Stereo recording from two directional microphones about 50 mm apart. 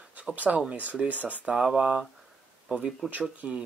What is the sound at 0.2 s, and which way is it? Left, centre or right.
Speech, right.